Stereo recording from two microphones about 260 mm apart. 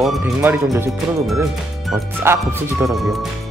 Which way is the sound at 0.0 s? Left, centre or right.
Centre.